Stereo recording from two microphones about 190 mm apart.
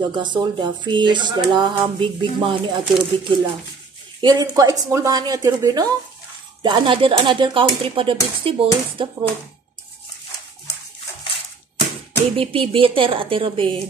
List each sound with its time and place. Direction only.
0.1 s speech: 25° right (ahead or behind)
12.4 s speech: 30° right (ahead or behind)